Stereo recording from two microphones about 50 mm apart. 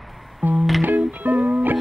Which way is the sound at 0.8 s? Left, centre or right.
Right.